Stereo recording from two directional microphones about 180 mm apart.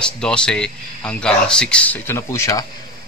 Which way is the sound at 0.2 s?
5° left (ahead or behind).